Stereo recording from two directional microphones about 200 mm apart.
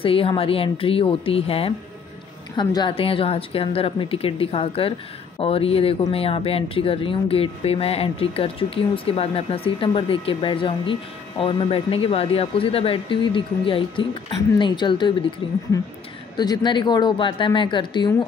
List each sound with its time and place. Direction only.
0.0 s speech: 25° left (ahead or behind)